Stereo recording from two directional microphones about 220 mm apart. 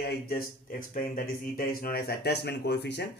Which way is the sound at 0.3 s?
40° left (ahead or behind).